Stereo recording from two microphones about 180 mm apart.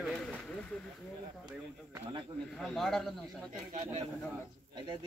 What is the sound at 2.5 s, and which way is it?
Speech, centre (ahead or behind).